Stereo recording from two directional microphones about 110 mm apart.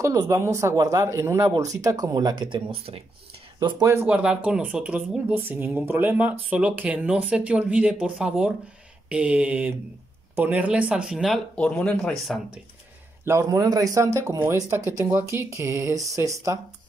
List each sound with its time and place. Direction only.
0.0 s speech: 30° right (ahead or behind); by 3.0 s 60° right (ahead or behind)
3.8 s speech: 25° right (ahead or behind)
4.1 s speech: 10° right (ahead or behind)
11.5 s speech: 10° left (ahead or behind)
13.2 s speech: 25° right (ahead or behind)
14.9 s speech: 20° right (ahead or behind)